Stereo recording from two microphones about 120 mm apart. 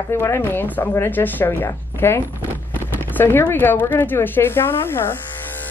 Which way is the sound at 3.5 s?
15° left (ahead or behind).